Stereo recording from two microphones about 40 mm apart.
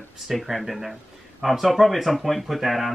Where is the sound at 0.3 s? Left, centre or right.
Centre.